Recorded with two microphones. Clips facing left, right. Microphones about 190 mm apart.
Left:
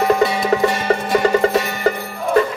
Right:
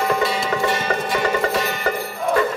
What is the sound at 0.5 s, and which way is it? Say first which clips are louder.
Music: left 5 dB; 40° left (ahead or behind).